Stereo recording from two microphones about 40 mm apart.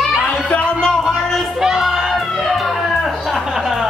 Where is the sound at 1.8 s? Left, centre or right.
Centre.